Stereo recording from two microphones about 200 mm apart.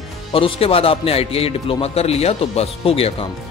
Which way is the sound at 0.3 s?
30° left (ahead or behind).